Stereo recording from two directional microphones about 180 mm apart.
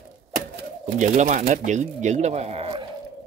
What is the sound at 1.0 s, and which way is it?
Speech, 40° right (ahead or behind).